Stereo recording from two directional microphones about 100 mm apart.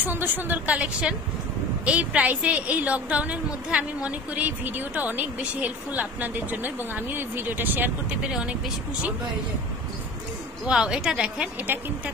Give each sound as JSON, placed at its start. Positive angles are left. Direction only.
{"t": 0.0, "sound": "a woman's voice", "side_deg": -20}
{"t": 8.2, "sound": "a woman's voice", "side_deg": -5}
{"t": 10.7, "sound": "a woman's voice", "side_deg": -10}